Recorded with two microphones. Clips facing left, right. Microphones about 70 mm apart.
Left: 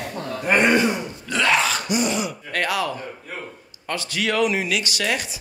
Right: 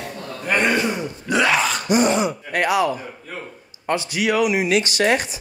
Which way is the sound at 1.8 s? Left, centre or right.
Right.